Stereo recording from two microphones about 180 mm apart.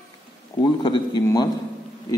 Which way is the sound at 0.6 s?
25° left (ahead or behind).